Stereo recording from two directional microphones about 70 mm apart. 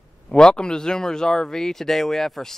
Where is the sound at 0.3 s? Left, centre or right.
Centre.